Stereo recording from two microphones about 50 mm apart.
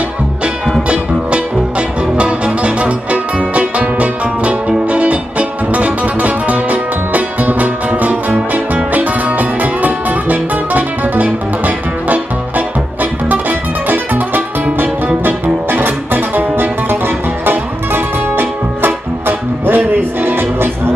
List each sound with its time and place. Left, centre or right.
0.8 s music: right